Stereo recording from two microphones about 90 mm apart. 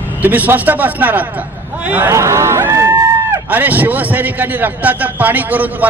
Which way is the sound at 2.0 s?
30° right (ahead or behind).